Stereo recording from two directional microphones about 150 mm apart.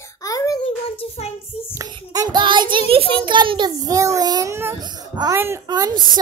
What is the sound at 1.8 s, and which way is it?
Child singing, 25° right (ahead or behind).